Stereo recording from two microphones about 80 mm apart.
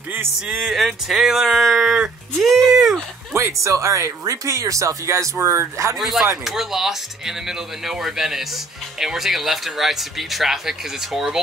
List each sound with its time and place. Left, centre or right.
0.5 s speech: centre
3.3 s speech: right
5.9 s speech: centre